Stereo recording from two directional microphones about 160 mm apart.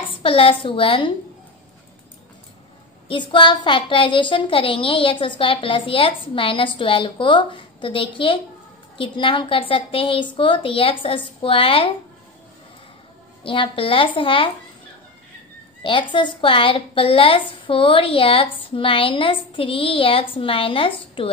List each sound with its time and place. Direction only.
0.1 s a woman's voice: 35° left (ahead or behind)
3.1 s a woman's voice: 30° left (ahead or behind)
13.4 s a woman's voice: 30° left (ahead or behind)
15.8 s a woman's voice: 30° left (ahead or behind)